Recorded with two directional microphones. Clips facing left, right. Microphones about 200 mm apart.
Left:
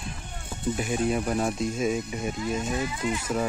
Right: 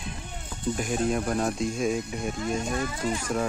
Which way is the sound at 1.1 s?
5° left (ahead or behind).